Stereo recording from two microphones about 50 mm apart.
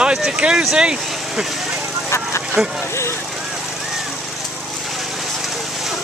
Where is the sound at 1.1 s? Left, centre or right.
Centre.